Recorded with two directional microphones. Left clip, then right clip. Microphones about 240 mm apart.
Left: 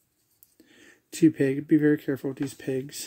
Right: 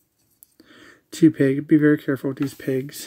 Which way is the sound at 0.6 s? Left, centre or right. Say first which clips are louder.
Right 6 dB; centre.